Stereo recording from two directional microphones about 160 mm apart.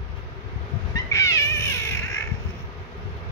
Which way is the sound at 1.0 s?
20° left (ahead or behind).